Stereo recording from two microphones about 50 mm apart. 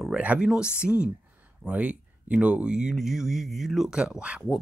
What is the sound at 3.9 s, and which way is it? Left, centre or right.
Speech, centre.